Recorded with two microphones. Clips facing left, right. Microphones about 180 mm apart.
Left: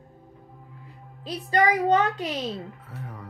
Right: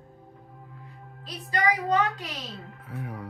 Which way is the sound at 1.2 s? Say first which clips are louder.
Left 4 dB; 35° left (ahead or behind).